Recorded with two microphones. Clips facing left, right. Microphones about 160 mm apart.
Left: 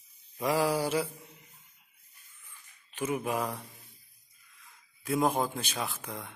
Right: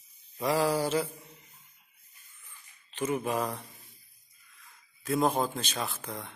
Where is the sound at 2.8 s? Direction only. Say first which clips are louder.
Right 1 dB; 10° left (ahead or behind).